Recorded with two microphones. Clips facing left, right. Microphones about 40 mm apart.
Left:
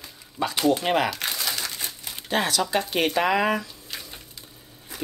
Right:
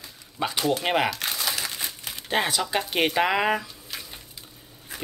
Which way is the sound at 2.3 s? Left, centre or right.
Right.